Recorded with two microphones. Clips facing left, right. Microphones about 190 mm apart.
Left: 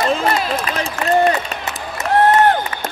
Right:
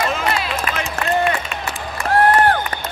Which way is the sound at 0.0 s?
35° left (ahead or behind).